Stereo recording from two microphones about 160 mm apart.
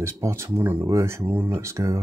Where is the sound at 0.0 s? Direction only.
20° right (ahead or behind).